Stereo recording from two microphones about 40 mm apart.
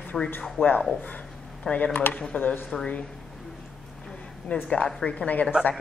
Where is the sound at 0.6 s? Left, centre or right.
Left.